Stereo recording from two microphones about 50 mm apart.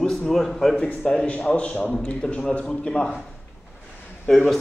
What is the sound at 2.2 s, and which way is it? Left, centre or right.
Speech, centre.